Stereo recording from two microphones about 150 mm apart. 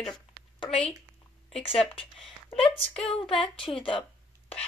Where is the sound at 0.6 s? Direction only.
40° left (ahead or behind).